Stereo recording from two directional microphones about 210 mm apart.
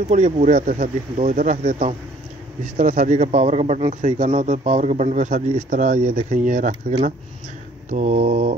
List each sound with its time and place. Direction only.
0.1 s a man's voice: 35° right (ahead or behind)